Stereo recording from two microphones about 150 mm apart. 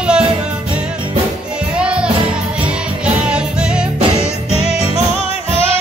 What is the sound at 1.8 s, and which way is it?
Music, 5° right (ahead or behind).